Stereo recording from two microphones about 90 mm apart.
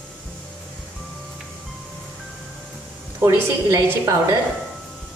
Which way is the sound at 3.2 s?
35° right (ahead or behind).